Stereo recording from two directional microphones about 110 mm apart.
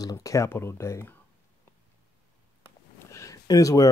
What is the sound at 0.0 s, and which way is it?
Speech, 30° left (ahead or behind).